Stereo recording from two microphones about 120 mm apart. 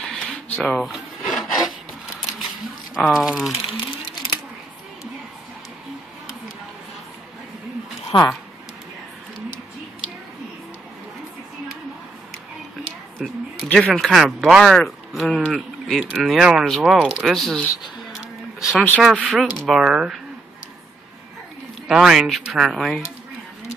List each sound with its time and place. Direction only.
0.1 s filing: centre (ahead or behind)
2.9 s speech: 5° right (ahead or behind)
8.1 s speech: 40° left (ahead or behind)
13.2 s speech: centre (ahead or behind)
18.1 s a sound: 5° right (ahead or behind)
19.1 s speech: 5° left (ahead or behind)
21.8 s speech: 5° right (ahead or behind)